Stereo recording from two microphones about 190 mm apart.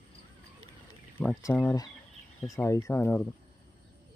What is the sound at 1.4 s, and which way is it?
Speech, 15° left (ahead or behind).